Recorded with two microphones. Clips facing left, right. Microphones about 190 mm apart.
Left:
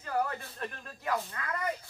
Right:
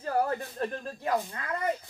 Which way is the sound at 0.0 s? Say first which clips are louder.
Right 4 dB; 35° right (ahead or behind).